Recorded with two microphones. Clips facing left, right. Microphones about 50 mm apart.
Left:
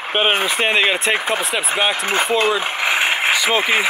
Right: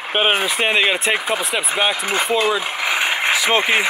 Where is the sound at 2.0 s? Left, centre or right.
Left.